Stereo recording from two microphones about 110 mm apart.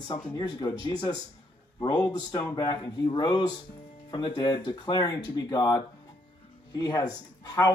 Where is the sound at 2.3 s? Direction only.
35° left (ahead or behind).